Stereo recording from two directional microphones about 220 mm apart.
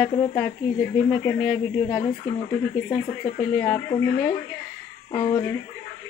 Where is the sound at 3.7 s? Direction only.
30° left (ahead or behind).